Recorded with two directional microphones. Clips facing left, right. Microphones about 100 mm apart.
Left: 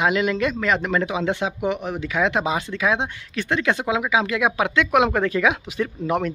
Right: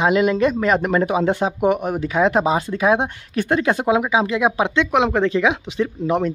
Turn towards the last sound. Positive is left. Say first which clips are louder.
# right 3 dB
turn(degrees=-25)  # may be behind; listen again after turning